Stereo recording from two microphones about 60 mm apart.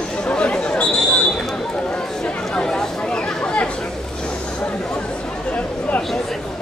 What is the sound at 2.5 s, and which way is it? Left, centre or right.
Chatter, centre.